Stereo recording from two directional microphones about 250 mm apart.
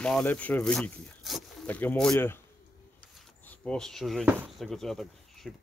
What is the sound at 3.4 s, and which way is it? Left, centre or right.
Speech, centre.